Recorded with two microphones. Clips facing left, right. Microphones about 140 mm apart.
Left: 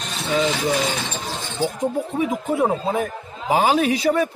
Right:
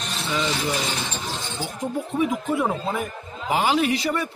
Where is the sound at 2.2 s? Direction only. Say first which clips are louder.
Left 3 dB; 30° left (ahead or behind).